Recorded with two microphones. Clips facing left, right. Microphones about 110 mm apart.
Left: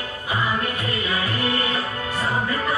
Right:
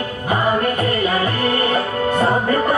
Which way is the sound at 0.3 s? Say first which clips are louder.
Right 7 dB; 50° right (ahead or behind).